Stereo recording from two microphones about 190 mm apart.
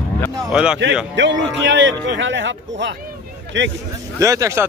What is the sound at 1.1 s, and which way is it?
Speech, 70° right (ahead or behind).